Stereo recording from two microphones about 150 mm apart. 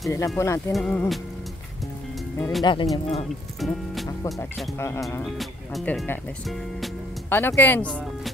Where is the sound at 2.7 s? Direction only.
30° left (ahead or behind).